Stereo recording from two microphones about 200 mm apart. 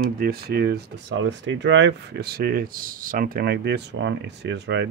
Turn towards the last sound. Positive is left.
turn(degrees=-60)  # may be behind; listen again after turning